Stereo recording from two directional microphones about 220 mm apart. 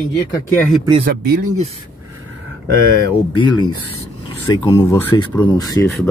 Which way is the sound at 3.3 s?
20° left (ahead or behind).